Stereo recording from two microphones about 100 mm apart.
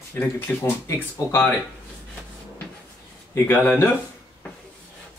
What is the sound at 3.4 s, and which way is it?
Speech, 20° left (ahead or behind).